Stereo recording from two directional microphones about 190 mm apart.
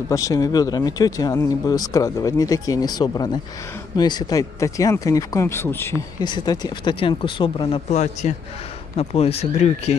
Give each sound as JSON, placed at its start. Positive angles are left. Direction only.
{"t": 0.1, "sound": "speech", "side_deg": 15}